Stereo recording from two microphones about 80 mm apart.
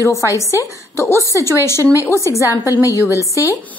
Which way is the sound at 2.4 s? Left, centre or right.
Left.